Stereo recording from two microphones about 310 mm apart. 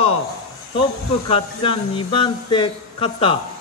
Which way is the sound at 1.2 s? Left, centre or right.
Centre.